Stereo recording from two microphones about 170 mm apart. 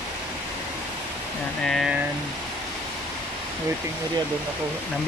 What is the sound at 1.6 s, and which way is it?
Speech, centre (ahead or behind).